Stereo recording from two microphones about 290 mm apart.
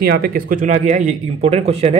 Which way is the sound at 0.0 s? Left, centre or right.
Right.